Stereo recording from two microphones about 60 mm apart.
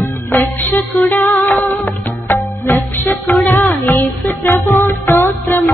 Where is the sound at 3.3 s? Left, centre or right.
Left.